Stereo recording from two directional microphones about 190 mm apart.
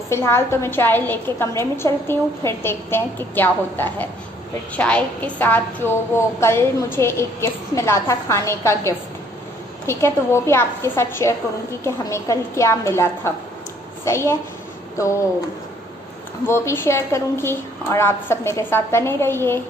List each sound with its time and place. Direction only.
0.1 s a woman's voice: 15° left (ahead or behind)
16.4 s a woman's voice: 10° left (ahead or behind)